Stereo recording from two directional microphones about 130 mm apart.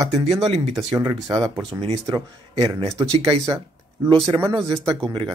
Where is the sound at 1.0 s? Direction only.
30° right (ahead or behind).